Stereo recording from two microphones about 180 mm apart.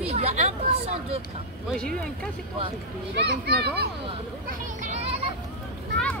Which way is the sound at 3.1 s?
65° right (ahead or behind).